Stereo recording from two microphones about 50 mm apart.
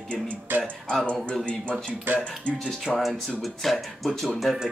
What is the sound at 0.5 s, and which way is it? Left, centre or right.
Speech, right.